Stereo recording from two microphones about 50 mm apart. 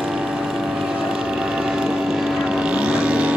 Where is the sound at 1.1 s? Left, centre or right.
Centre.